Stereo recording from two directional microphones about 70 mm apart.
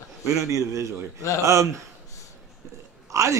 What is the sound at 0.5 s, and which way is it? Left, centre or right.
Speech, right.